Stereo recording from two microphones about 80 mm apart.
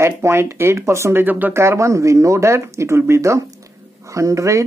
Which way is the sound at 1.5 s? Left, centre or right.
Right.